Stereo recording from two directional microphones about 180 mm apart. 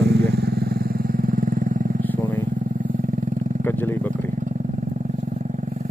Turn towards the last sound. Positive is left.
turn(degrees=10)  # may be behind; listen again after turning